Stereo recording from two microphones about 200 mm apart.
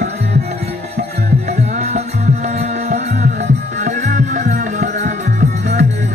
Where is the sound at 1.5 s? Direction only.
35° right (ahead or behind).